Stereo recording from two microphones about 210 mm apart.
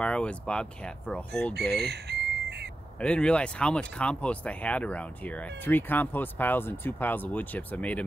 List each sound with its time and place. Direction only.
0.0 s speech: 5° left (ahead or behind)
1.5 s chicken: 50° right (ahead or behind)
3.0 s speech: 5° left (ahead or behind)